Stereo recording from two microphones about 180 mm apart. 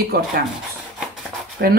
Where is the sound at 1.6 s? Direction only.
65° right (ahead or behind).